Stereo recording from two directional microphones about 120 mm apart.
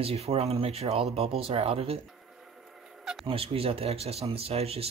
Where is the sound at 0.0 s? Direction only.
55° right (ahead or behind).